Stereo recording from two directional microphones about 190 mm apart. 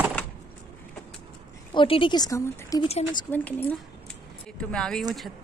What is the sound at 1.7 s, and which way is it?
Speech, 25° left (ahead or behind).